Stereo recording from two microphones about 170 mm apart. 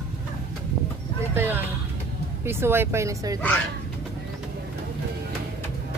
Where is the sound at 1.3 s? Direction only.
15° right (ahead or behind).